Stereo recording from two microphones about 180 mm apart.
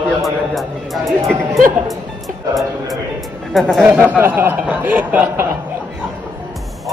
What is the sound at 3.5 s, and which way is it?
Speech, centre (ahead or behind).